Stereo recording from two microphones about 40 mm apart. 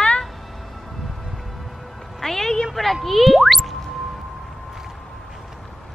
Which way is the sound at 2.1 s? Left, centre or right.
Centre.